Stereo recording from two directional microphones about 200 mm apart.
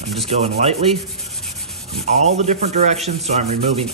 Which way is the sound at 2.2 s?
35° right (ahead or behind).